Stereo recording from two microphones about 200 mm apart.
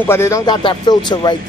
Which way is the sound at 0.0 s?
15° left (ahead or behind).